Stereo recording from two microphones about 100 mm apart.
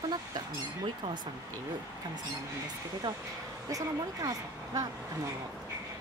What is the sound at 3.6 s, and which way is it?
Speech, 35° right (ahead or behind).